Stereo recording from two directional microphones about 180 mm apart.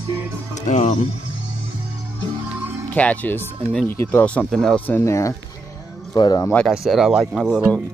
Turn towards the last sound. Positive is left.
turn(degrees=0)  # may be behind; listen again after turning